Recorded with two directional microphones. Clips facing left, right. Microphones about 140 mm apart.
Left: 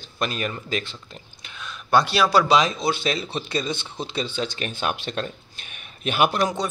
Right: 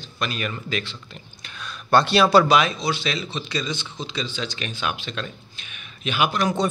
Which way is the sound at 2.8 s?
50° left (ahead or behind).